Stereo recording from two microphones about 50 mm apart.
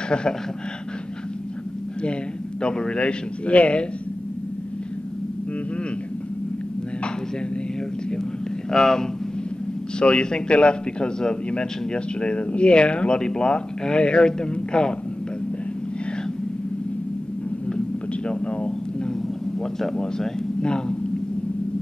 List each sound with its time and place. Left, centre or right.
2.6 s a man's voice: centre
8.1 s a man's voice: centre
17.6 s a sound: centre
19.6 s speech: centre